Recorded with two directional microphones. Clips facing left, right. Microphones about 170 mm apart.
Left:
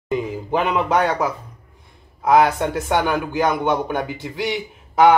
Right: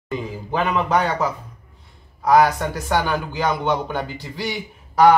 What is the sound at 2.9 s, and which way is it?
Speech, 15° left (ahead or behind).